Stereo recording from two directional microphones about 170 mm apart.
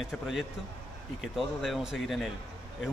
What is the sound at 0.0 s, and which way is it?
Speech, centre (ahead or behind).